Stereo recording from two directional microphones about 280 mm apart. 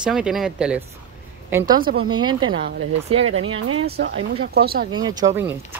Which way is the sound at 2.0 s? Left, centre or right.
Centre.